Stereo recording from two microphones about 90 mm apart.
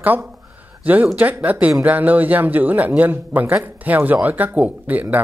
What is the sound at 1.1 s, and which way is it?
Speech, 20° right (ahead or behind).